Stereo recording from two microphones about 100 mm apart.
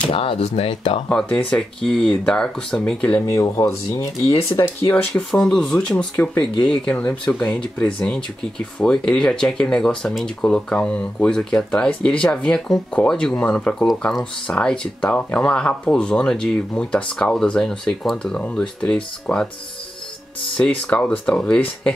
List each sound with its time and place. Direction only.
0.1 s speech: 70° left (ahead or behind)
1.0 s speech: 10° left (ahead or behind)
3.3 s speech: 35° left (ahead or behind)
5.3 s speech: 5° left (ahead or behind)
20.8 s speech: 15° left (ahead or behind)